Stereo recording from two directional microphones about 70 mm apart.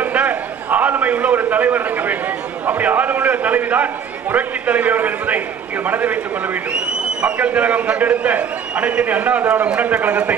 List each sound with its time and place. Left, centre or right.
0.0 s a sound: right
2.6 s a man's voice: right
9.8 s a man's voice: right